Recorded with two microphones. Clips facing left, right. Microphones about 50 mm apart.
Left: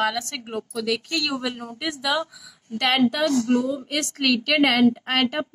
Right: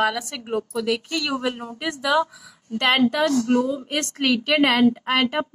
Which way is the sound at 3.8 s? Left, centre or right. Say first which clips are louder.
Right 1 dB; right.